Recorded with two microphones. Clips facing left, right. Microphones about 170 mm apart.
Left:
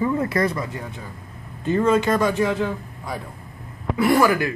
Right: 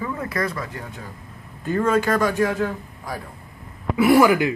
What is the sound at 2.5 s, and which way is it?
Speech, 10° right (ahead or behind).